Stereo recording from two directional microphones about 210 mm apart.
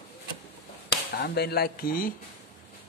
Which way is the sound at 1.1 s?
50° left (ahead or behind).